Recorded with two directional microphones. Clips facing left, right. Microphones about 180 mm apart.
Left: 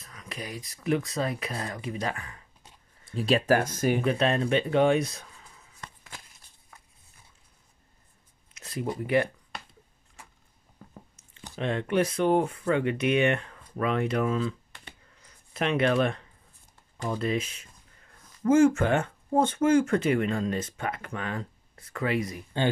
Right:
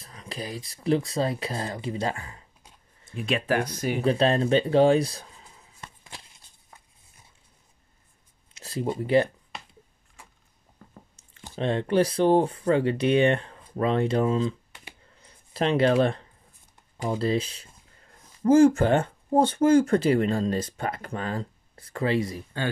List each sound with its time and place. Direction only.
0.0 s speech: 30° right (ahead or behind)
3.1 s speech: 35° left (ahead or behind)
4.0 s speech: 35° right (ahead or behind)
5.8 s a sound: 25° right (ahead or behind)
8.5 s speech: 30° right (ahead or behind)
11.1 s speech: 30° right (ahead or behind)